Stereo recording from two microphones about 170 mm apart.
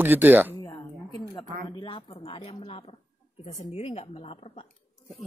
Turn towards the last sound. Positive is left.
turn(degrees=35)  # may be behind; listen again after turning